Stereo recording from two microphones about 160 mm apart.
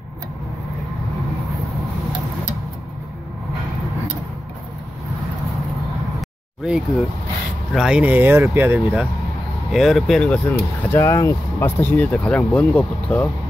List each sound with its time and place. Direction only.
7.7 s speech: 5° right (ahead or behind)
9.7 s speech: centre (ahead or behind)
10.4 s speech: 15° left (ahead or behind)